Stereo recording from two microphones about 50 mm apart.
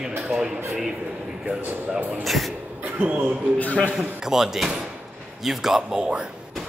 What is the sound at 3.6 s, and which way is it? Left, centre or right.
Speech, left.